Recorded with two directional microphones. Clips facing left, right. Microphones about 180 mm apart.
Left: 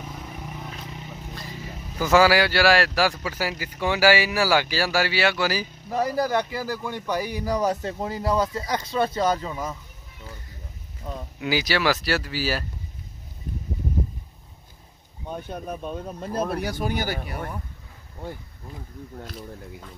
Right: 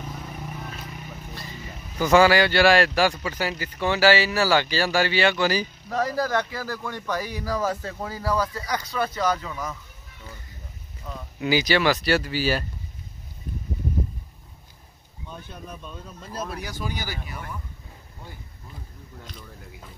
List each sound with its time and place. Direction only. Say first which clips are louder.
0.2 s vehicle: right 1 dB; centre (ahead or behind)
0.8 s vehicle: left 1 dB; 20° left (ahead or behind)
1.3 s speech: left 1 dB; centre (ahead or behind); by 9.8 s 30° left (ahead or behind)
11.3 s speech: right 3 dB; centre (ahead or behind)
15.2 s speech: left 7 dB; 55° left (ahead or behind)